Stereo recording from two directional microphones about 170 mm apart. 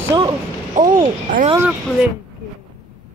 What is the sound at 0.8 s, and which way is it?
Speech, 50° right (ahead or behind).